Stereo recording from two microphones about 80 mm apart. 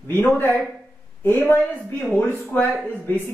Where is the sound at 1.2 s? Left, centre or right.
Left.